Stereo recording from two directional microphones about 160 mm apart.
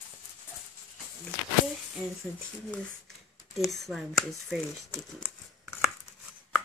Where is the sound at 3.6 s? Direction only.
Centre (ahead or behind).